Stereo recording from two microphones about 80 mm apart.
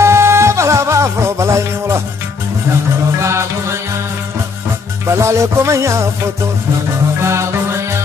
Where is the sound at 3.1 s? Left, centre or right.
Right.